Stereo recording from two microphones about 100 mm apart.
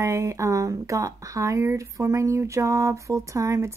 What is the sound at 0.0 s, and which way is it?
Speech, 30° right (ahead or behind).